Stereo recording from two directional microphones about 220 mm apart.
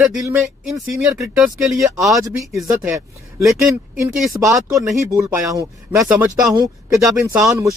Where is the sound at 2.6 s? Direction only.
5° right (ahead or behind).